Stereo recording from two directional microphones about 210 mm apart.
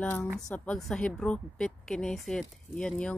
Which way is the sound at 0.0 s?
5° left (ahead or behind).